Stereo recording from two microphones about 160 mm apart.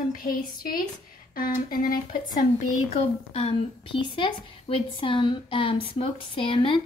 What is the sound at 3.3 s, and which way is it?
A woman's voice, 35° left (ahead or behind).